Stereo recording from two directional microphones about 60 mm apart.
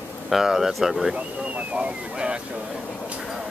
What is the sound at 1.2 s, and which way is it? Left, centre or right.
Speech, right.